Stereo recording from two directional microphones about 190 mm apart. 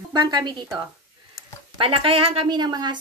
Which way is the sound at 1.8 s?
30° right (ahead or behind).